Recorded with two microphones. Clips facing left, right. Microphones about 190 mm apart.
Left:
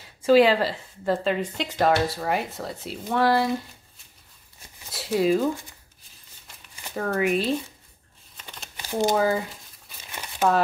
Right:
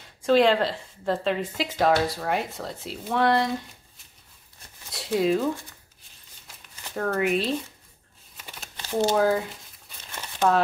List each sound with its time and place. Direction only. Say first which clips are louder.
0.2 s a woman's voice: left 2 dB; 5° left (ahead or behind)
4.9 s a woman's voice: left 1 dB; centre (ahead or behind)
6.4 s crumpling: left 1 dB; centre (ahead or behind)
8.7 s a sound: even; 10° left (ahead or behind)
9.1 s a woman's voice: right 1 dB; centre (ahead or behind)
10.1 s crumpling: even; 10° left (ahead or behind)